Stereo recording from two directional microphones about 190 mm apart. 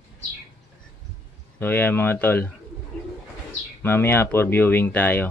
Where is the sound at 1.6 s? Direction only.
10° left (ahead or behind).